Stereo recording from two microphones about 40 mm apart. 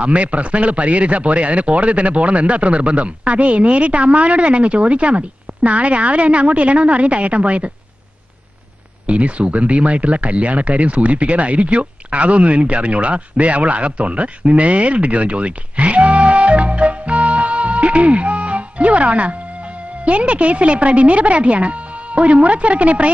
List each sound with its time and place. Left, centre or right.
0.0 s speech: right
9.0 s speech: right